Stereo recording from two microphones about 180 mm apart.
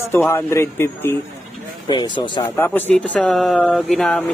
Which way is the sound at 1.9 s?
25° left (ahead or behind).